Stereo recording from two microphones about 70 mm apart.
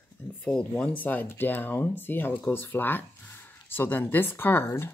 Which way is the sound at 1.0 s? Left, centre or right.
Left.